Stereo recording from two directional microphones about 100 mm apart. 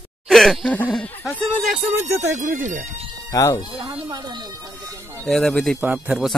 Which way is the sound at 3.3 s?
35° left (ahead or behind).